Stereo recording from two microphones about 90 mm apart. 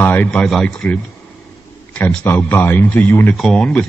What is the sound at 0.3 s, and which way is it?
Speech, 10° left (ahead or behind).